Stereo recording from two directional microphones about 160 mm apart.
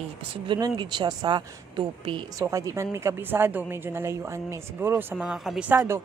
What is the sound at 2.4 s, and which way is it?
A woman's voice, 20° right (ahead or behind).